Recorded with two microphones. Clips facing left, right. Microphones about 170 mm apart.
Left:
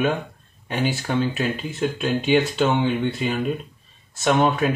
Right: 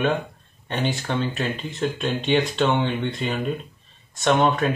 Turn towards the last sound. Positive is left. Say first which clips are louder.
# even
turn(degrees=0)  # may be behind; listen again after turning